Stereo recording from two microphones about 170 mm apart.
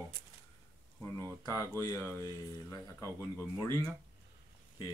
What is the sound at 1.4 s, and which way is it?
Speech, 20° left (ahead or behind).